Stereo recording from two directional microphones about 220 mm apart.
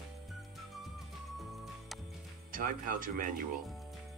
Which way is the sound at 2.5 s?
40° right (ahead or behind).